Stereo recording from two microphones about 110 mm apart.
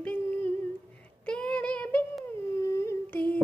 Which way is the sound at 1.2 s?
10° left (ahead or behind).